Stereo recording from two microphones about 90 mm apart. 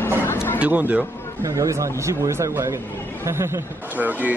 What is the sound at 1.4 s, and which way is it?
Speech, 35° right (ahead or behind).